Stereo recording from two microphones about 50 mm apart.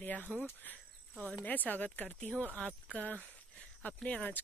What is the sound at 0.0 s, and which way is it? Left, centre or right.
Speech, left.